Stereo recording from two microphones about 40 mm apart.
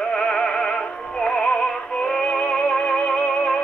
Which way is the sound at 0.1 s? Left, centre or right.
Left.